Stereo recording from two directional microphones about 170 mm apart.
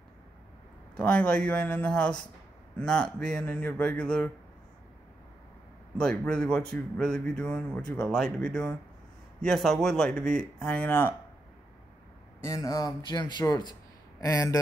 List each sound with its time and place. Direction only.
0.9 s a man's voice: 5° left (ahead or behind)
5.9 s speech: 5° left (ahead or behind)
12.4 s speech: 15° left (ahead or behind)